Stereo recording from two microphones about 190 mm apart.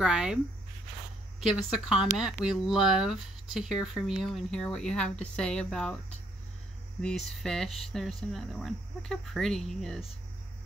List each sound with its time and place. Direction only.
0.0 s speech: 5° right (ahead or behind)
1.5 s speech: 5° right (ahead or behind)